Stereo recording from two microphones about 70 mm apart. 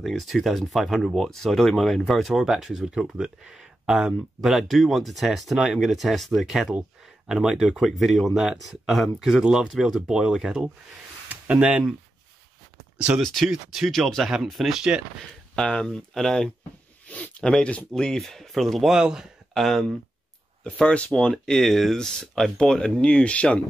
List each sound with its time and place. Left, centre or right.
0.0 s speech: centre
9.4 s speech: centre
11.2 s a sound: right
12.9 s speech: centre
13.2 s speech: centre
15.5 s speech: centre
17.1 s zipper: left
17.4 s speech: centre
18.9 s speech: centre
19.5 s speech: centre
20.6 s speech: centre